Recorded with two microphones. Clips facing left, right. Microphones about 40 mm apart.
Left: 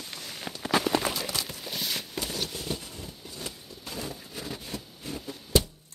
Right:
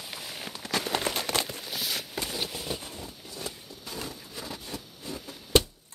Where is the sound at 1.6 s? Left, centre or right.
Centre.